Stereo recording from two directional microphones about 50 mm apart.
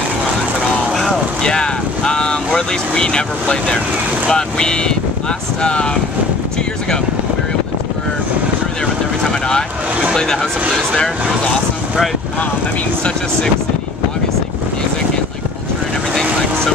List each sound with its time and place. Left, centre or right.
1.4 s speech: centre
9.2 s boat: centre
10.1 s speech: centre